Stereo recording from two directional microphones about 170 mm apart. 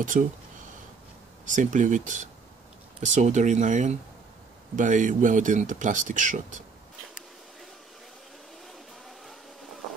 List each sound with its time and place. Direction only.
0.0 s speech: 50° right (ahead or behind)
1.4 s speech: 50° right (ahead or behind)